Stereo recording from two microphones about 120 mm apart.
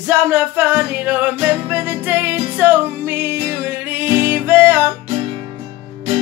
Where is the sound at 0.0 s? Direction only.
20° right (ahead or behind).